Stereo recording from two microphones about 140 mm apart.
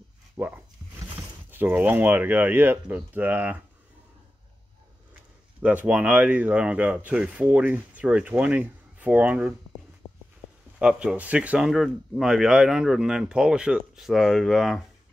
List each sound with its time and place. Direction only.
0.4 s dog: 20° right (ahead or behind)
1.5 s speech: 15° right (ahead or behind)
5.6 s speech: 10° right (ahead or behind)
10.0 s a sound: 40° left (ahead or behind)
10.8 s speech: 5° right (ahead or behind)